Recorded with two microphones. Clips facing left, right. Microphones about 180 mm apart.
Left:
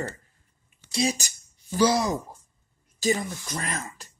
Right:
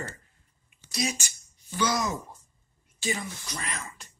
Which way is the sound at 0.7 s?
30° left (ahead or behind).